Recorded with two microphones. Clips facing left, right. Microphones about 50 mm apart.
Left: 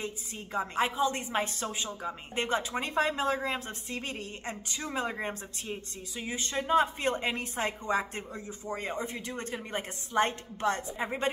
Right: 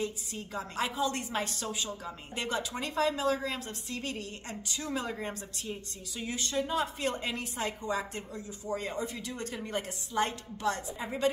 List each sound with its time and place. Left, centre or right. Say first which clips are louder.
0.0 s a woman's voice: right 3 dB; left